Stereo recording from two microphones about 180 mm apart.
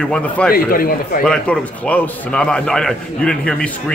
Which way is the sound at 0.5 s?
55° left (ahead or behind).